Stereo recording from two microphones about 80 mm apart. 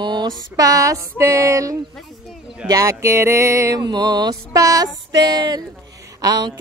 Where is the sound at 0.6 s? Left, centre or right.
Right.